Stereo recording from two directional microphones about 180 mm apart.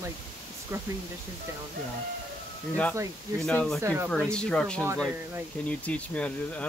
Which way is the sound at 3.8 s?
15° right (ahead or behind).